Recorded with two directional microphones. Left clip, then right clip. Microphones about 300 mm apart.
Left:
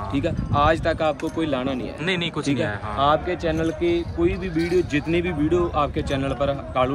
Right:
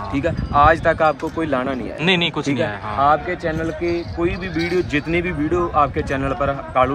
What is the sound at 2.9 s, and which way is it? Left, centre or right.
Speech, centre.